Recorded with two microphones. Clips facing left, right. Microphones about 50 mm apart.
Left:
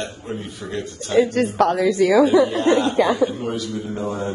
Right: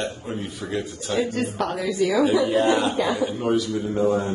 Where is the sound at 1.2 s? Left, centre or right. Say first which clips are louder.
Left 8 dB; left.